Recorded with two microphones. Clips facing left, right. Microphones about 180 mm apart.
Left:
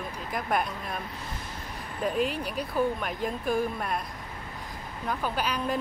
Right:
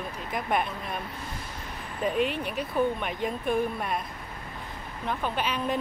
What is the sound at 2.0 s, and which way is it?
Speech, centre (ahead or behind).